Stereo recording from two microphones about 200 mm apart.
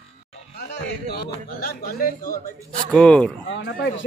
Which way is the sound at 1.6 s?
45° left (ahead or behind).